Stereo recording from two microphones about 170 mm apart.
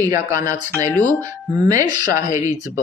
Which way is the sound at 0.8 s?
10° left (ahead or behind).